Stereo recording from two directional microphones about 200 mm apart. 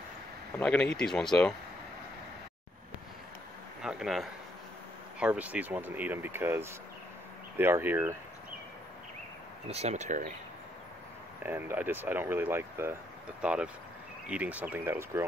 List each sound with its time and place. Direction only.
0.6 s speech: 5° left (ahead or behind)
3.8 s speech: centre (ahead or behind)
9.7 s speech: 30° right (ahead or behind)
11.4 s speech: 10° right (ahead or behind)